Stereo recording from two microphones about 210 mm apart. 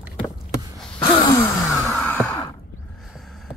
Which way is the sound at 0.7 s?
5° left (ahead or behind).